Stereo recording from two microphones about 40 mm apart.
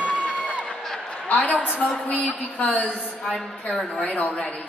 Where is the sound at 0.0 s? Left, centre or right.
Right.